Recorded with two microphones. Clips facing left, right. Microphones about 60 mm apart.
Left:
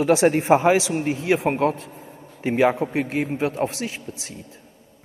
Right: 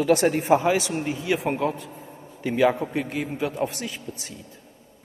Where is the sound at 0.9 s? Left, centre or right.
Left.